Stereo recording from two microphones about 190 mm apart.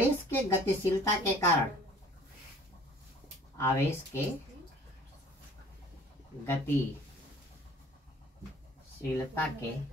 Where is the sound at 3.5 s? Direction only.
15° left (ahead or behind).